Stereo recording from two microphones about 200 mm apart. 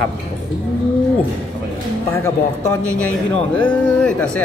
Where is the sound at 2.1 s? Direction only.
10° left (ahead or behind).